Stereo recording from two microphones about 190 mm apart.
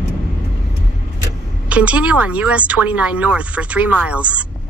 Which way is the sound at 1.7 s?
5° right (ahead or behind).